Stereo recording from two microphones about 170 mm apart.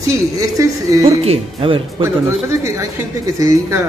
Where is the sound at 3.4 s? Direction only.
20° right (ahead or behind).